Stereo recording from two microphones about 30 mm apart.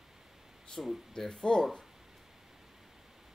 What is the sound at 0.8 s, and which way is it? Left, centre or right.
Speech, centre.